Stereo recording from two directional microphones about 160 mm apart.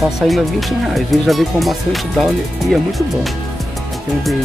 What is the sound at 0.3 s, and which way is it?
Speech, centre (ahead or behind).